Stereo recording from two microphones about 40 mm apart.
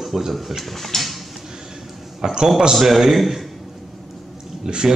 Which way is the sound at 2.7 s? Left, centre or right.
Centre.